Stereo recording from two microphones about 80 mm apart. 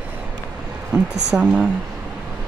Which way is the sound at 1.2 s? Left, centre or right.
Centre.